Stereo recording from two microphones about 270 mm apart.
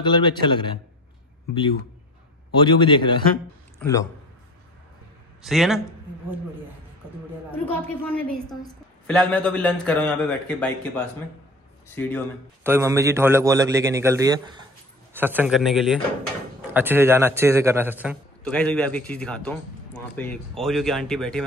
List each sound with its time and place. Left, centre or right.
0.0 s a man's voice: centre
2.6 s a man's voice: centre
5.4 s a man's voice: centre
7.7 s a man's voice: centre
11.9 s a man's voice: centre
12.6 s a man's voice: centre
18.4 s a man's voice: centre